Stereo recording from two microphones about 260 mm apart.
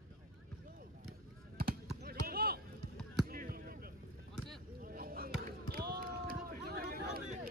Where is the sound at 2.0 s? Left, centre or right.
Right.